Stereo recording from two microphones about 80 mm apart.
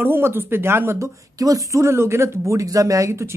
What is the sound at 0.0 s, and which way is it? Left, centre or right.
A woman's voice, right.